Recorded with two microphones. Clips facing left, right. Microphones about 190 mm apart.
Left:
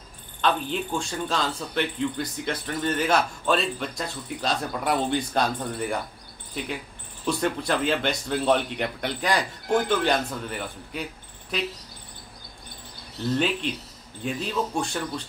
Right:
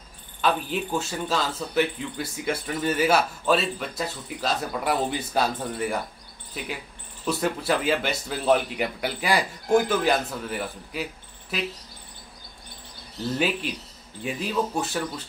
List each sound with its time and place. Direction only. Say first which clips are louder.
0.4 s speech: even; 5° right (ahead or behind)
7.2 s speech: even; 5° right (ahead or behind)
14.2 s speech: right 1 dB; 5° right (ahead or behind)